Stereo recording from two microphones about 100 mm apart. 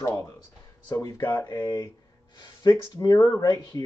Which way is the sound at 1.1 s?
20° left (ahead or behind).